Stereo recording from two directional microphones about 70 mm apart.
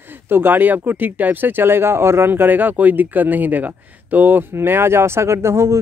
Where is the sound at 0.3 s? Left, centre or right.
Right.